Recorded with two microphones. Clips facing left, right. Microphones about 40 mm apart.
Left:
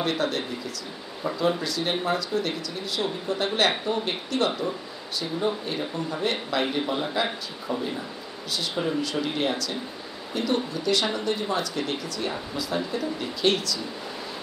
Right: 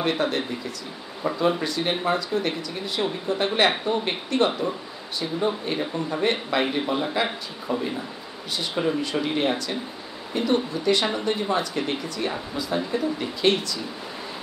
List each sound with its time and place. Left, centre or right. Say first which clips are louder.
0.0 s speech: right 2 dB; centre
4.5 s speech: right 2 dB; centre